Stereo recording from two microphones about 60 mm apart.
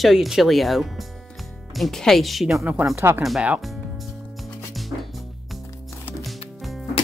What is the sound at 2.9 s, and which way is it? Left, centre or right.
Speech, right.